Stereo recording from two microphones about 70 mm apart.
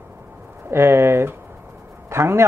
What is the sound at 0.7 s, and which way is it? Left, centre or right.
A man's voice, right.